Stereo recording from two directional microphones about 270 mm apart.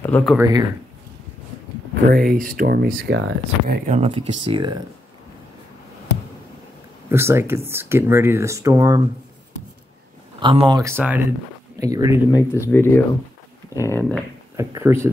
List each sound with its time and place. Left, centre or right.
0.0 s speech: centre
0.4 s speech: centre
2.0 s speech: right
3.6 s speech: right
7.1 s speech: centre
10.4 s speech: centre
12.3 s speech: centre
14.6 s speech: centre